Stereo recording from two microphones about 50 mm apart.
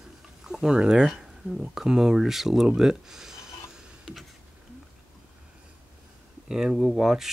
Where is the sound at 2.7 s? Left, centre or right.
Centre.